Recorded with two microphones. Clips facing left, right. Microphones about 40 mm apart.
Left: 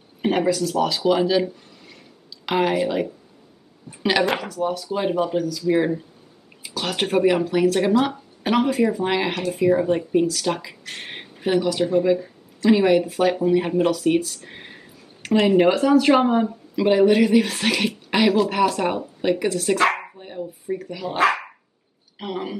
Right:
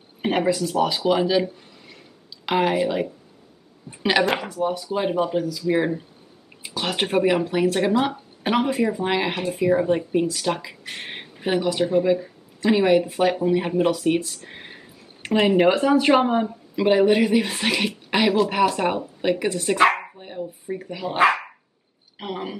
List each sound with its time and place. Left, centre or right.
0.2 s speech: centre
15.2 s speech: centre
20.0 s bow-wow: centre
20.8 s speech: centre